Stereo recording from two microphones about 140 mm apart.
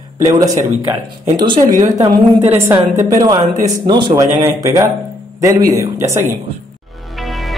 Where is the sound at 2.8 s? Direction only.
55° right (ahead or behind).